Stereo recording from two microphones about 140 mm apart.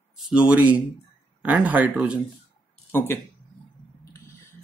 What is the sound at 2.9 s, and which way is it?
Speech, 15° left (ahead or behind).